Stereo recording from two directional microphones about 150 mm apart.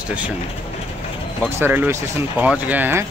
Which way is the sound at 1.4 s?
10° right (ahead or behind).